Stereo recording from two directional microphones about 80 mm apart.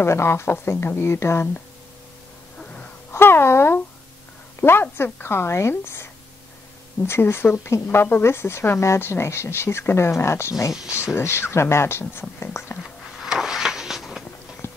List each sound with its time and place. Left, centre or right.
0.0 s speech: left
3.1 s a sound: left
4.6 s speech: left
7.1 s speech: left
13.2 s a sound: centre
14.6 s clip-clop: left